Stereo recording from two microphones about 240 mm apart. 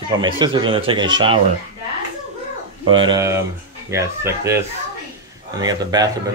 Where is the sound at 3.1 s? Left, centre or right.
Centre.